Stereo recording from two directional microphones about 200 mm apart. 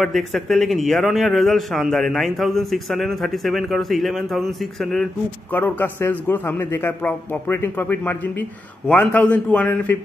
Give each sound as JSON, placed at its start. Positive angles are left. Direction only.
{"t": 0.0, "sound": "a man's voice", "side_deg": 0}